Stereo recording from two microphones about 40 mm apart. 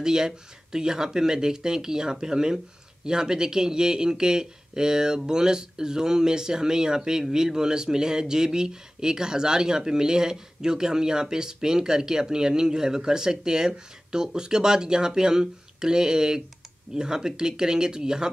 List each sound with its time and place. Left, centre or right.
0.0 s speech: centre